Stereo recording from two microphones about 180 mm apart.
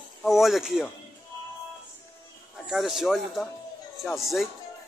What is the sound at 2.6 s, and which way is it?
A man's voice, centre (ahead or behind).